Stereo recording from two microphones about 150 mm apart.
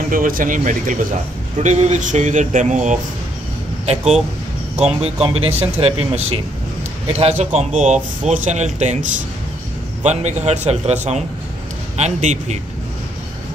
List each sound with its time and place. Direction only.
0.1 s speech: 65° right (ahead or behind)
3.8 s speech: 45° right (ahead or behind)
10.0 s speech: 50° right (ahead or behind)